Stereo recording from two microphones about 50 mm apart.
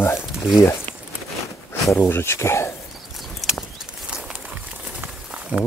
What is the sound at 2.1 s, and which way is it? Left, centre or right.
Speech, left.